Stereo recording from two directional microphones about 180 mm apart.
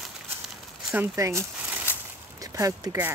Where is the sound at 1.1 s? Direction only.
15° right (ahead or behind).